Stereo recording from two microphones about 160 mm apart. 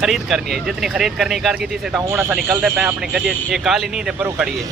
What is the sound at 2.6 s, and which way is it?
Speech, centre (ahead or behind).